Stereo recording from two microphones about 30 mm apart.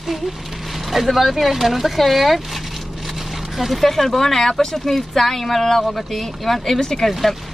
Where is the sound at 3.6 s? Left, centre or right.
Centre.